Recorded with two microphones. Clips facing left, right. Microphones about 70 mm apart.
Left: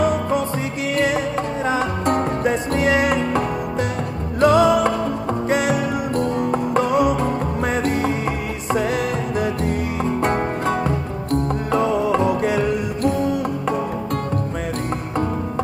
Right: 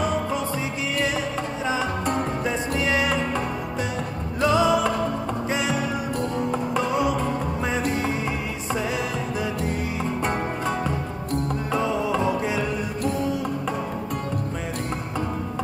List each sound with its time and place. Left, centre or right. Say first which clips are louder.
0.9 s music: left 7 dB; left
4.4 s music: left 5 dB; left
11.7 s music: left 6 dB; left